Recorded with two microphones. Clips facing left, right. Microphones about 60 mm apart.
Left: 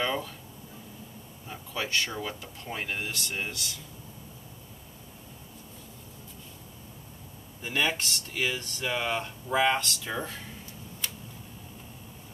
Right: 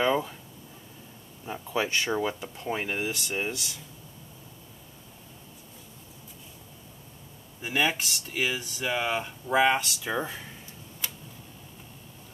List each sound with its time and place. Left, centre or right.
0.0 s a sound: centre
1.5 s speech: centre
7.6 s speech: centre